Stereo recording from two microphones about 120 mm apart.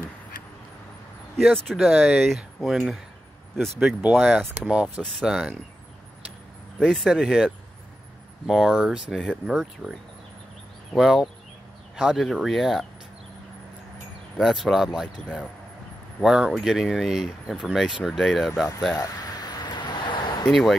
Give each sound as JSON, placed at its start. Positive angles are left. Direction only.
{"t": 1.3, "sound": "speech", "side_deg": 5}
{"t": 4.6, "sound": "speech", "side_deg": -5}
{"t": 6.8, "sound": "speech", "side_deg": 0}
{"t": 11.0, "sound": "speech", "side_deg": 0}
{"t": 14.3, "sound": "speech", "side_deg": 0}
{"t": 16.2, "sound": "speech", "side_deg": -5}
{"t": 18.9, "sound": "a sound", "side_deg": 35}
{"t": 20.4, "sound": "speech", "side_deg": 0}